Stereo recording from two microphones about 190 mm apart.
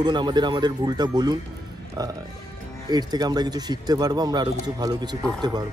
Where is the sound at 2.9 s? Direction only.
20° right (ahead or behind).